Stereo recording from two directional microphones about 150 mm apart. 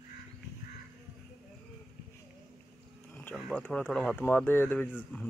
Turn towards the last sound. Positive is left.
turn(degrees=10)  # may be behind; listen again after turning